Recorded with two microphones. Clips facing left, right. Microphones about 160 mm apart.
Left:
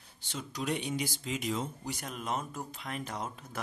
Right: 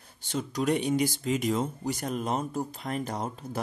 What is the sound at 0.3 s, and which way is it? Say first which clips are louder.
Speech: right 8 dB; 45° right (ahead or behind).